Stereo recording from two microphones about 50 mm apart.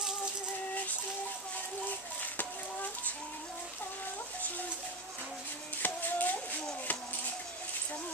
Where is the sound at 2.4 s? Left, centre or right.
Left.